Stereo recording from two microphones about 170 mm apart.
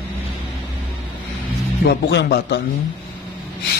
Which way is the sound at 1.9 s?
75° left (ahead or behind).